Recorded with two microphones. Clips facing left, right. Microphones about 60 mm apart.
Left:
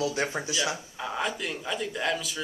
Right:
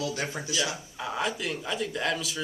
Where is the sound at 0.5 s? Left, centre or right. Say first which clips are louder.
Left 1 dB; centre.